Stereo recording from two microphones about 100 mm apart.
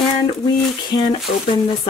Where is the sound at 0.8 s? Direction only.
45° left (ahead or behind).